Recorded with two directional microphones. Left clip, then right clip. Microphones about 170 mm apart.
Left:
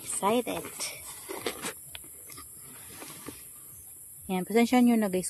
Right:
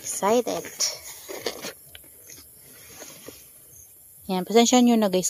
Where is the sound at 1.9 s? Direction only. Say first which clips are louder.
Left 2 dB; 40° left (ahead or behind).